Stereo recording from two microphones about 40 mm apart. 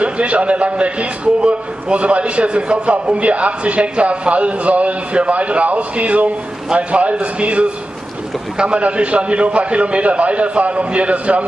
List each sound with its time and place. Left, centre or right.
0.0 s a man's voice: right